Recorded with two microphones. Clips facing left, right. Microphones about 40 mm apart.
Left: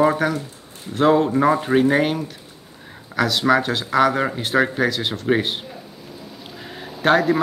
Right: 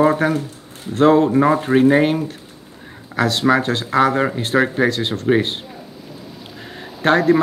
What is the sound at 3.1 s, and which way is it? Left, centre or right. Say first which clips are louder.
Speech: right 1 dB; centre.